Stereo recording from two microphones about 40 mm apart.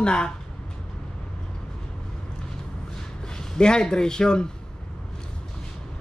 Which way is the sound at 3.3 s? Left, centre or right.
Centre.